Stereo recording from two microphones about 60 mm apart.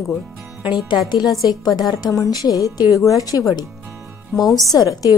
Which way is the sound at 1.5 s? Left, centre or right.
Left.